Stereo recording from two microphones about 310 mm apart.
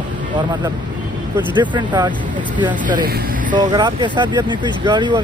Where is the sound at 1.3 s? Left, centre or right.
Centre.